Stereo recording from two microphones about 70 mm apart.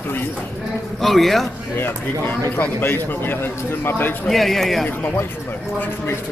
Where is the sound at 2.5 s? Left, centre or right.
Left.